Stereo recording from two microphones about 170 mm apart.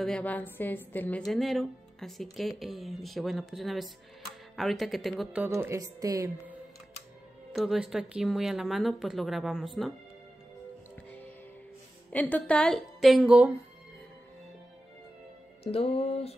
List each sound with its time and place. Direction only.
0.0 s a woman's voice: 5° left (ahead or behind)
5.5 s a woman's voice: 15° right (ahead or behind)
7.5 s speech: centre (ahead or behind)
12.1 s speech: 10° left (ahead or behind); by 13.6 s 10° right (ahead or behind)
15.6 s music: 35° left (ahead or behind)